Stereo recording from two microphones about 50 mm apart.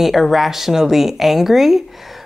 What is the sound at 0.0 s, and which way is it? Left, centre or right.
Speech, centre.